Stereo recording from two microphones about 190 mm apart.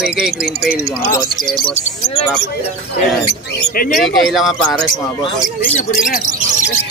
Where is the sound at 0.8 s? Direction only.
15° left (ahead or behind).